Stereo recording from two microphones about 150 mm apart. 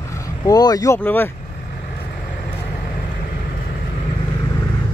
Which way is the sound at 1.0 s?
15° left (ahead or behind).